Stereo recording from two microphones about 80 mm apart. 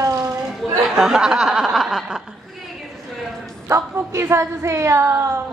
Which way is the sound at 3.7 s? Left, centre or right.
Right.